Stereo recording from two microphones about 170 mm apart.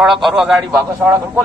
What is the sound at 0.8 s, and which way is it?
Speech, 20° right (ahead or behind).